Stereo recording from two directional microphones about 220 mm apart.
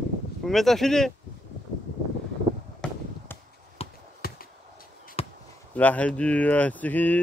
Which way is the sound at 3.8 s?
30° left (ahead or behind).